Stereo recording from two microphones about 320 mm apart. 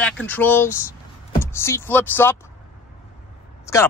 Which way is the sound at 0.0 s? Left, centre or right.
Centre.